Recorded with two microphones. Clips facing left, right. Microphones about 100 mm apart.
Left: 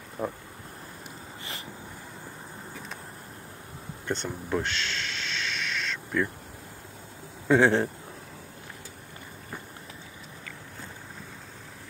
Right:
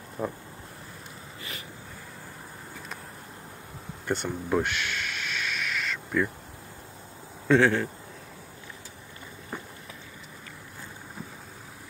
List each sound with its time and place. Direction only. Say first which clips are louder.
0.2 s a man's voice: even; 20° left (ahead or behind)
4.1 s owl: right 3 dB; 10° right (ahead or behind)
7.4 s a man's voice: even; 15° left (ahead or behind)